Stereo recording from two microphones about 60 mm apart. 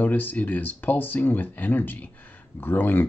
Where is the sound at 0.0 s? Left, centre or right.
Left.